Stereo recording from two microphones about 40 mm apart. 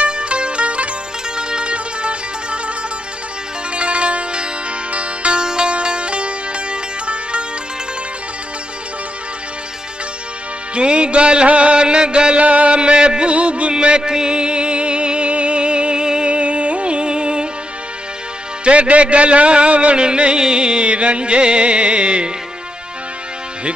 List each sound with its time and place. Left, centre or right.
0.0 s music: right
3.7 s music: right
10.7 s music: right
18.6 s music: right